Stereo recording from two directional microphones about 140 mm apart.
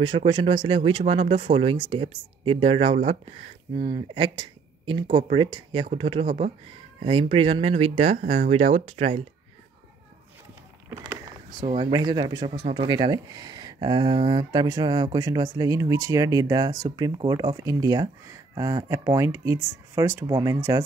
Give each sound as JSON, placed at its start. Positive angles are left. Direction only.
{"t": 0.0, "sound": "speech", "side_deg": -35}
{"t": 3.7, "sound": "speech", "side_deg": -30}
{"t": 11.6, "sound": "speech", "side_deg": -50}
{"t": 11.9, "sound": "speech", "side_deg": -30}